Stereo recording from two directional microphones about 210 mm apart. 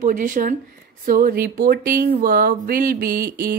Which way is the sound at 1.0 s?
45° right (ahead or behind).